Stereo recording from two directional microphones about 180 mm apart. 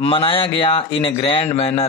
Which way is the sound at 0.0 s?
30° left (ahead or behind).